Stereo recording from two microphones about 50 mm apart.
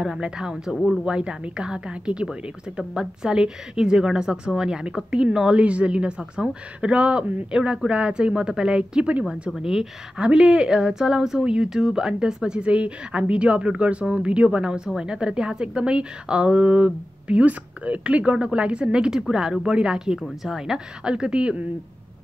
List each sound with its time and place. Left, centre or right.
0.0 s a woman's voice: centre